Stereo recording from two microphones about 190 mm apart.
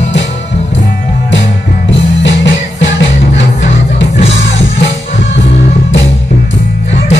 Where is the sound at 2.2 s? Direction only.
70° left (ahead or behind).